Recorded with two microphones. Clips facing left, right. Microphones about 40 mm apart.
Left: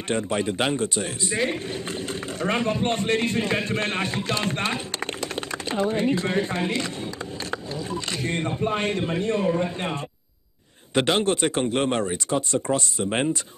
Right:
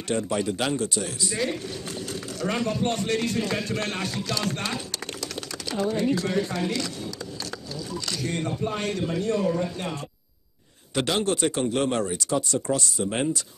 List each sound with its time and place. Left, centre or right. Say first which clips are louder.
0.1 s speech: left 1 dB; left
11.0 s speech: left 3 dB; left